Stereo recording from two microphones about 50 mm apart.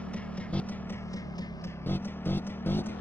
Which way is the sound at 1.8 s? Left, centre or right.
Left.